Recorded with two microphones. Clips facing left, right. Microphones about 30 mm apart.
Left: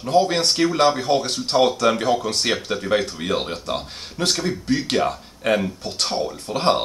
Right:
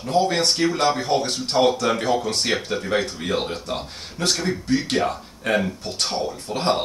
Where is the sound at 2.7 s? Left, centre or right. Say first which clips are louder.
Left 1 dB; left.